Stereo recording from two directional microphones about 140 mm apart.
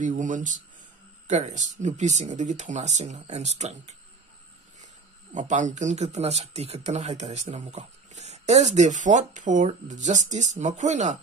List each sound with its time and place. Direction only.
0.0 s speech: 65° right (ahead or behind)
5.3 s speech: 60° right (ahead or behind)